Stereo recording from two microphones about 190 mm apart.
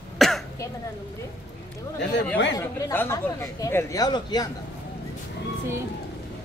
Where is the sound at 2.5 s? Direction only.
15° left (ahead or behind).